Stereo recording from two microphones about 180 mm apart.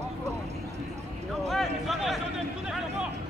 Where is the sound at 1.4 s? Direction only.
Centre (ahead or behind).